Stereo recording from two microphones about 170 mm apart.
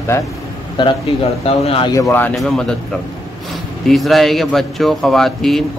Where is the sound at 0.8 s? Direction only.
25° left (ahead or behind).